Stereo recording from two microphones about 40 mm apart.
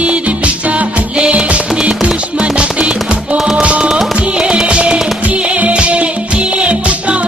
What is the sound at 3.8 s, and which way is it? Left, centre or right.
Music, centre.